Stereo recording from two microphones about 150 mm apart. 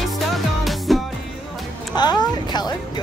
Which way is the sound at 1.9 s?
30° left (ahead or behind).